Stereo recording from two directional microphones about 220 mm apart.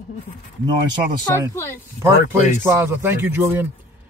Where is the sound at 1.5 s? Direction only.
10° left (ahead or behind).